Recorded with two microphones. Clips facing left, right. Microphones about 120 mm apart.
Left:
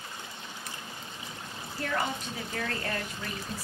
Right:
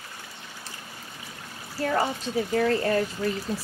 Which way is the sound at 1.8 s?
30° right (ahead or behind).